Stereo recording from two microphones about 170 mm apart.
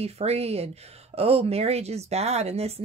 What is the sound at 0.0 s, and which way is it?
Speech, 35° right (ahead or behind).